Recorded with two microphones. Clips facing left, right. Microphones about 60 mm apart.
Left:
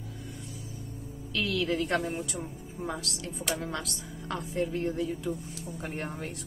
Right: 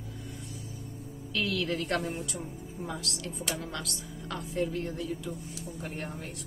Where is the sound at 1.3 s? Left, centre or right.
Centre.